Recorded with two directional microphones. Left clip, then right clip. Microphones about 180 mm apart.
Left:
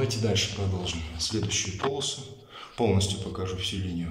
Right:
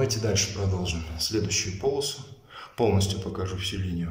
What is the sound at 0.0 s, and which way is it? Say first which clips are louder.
Speech: right 1 dB; centre (ahead or behind).